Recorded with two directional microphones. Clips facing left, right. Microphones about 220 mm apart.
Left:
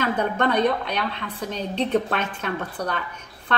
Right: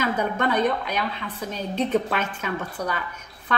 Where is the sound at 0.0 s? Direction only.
5° right (ahead or behind).